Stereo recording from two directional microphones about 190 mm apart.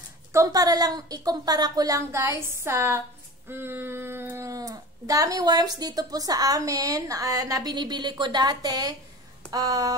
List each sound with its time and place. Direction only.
0.3 s speech: 15° right (ahead or behind)